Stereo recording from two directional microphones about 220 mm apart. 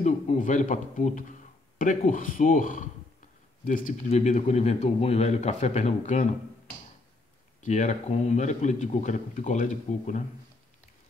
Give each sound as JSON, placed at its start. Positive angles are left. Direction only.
{"t": 0.0, "sound": "speech", "side_deg": 35}
{"t": 7.6, "sound": "speech", "side_deg": 35}